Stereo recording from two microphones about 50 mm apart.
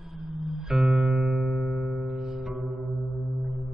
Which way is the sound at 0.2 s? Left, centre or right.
Centre.